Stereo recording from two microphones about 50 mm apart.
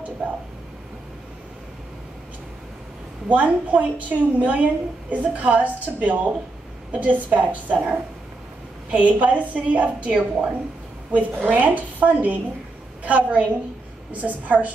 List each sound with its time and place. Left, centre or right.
3.3 s a woman's voice: right